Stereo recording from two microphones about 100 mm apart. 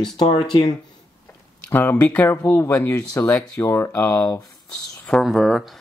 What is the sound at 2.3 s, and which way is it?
Speech, 30° left (ahead or behind).